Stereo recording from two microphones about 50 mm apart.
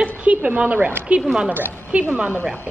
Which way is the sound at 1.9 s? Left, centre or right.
Right.